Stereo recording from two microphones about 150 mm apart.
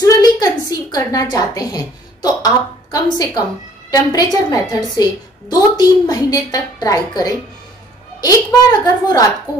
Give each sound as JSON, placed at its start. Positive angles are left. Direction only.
{"t": 0.0, "sound": "a woman's voice", "side_deg": 25}